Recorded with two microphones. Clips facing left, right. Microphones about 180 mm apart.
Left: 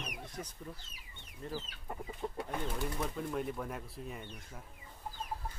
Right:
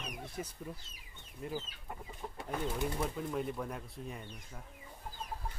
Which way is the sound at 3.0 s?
Centre (ahead or behind).